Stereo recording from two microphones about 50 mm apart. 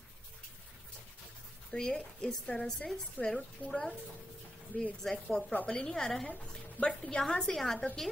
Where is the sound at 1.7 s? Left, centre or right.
Centre.